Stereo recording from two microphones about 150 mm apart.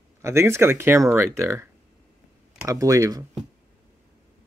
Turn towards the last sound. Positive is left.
turn(degrees=-20)  # may be behind; listen again after turning